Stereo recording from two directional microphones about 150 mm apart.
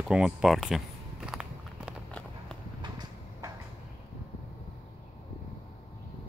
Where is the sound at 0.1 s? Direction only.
5° right (ahead or behind).